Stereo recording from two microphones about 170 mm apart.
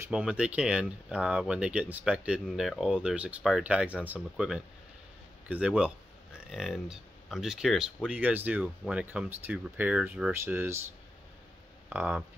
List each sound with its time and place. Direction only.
0.1 s speech: 5° right (ahead or behind)
11.9 s speech: 10° right (ahead or behind)